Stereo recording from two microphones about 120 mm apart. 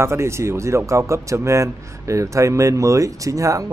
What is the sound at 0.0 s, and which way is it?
Speech, 20° right (ahead or behind).